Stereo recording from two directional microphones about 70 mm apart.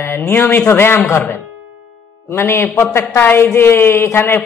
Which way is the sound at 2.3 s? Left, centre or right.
Left.